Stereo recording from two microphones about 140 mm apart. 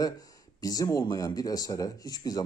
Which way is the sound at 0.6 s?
25° left (ahead or behind).